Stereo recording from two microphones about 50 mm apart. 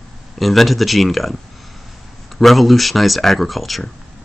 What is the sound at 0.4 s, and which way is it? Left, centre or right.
Speech, centre.